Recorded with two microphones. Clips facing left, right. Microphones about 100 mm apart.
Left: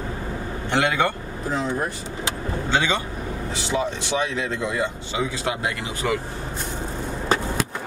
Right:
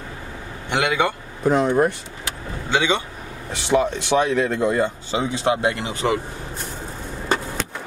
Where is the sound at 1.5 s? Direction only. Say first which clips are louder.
Right 8 dB; 65° right (ahead or behind).